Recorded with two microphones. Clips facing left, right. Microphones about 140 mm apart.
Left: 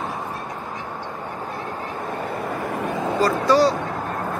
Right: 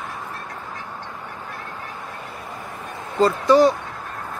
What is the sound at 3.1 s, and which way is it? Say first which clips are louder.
Speech: right 3 dB; 20° right (ahead or behind).